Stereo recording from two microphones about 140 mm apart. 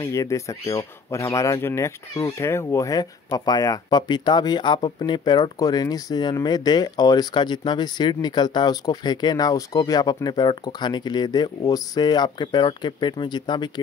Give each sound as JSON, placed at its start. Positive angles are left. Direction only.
{"t": 0.0, "sound": "speech", "side_deg": 20}